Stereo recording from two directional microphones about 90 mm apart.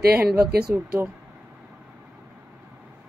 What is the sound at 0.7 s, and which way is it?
Speech, 20° right (ahead or behind).